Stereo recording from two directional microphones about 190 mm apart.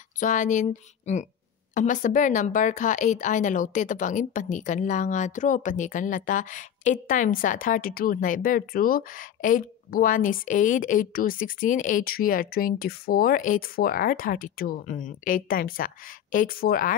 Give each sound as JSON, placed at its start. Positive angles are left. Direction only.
{"t": 0.2, "sound": "a woman's voice", "side_deg": 40}